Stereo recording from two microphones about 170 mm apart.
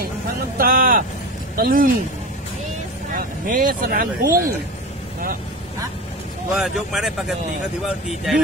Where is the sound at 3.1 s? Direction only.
55° right (ahead or behind).